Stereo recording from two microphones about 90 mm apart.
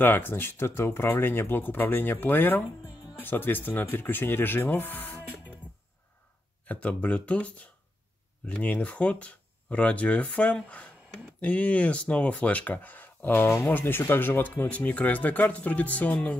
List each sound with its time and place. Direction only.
0.0 s speech: 25° left (ahead or behind)
6.6 s speech: 15° left (ahead or behind)